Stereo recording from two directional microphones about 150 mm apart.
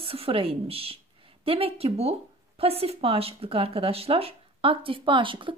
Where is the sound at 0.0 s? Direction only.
40° right (ahead or behind).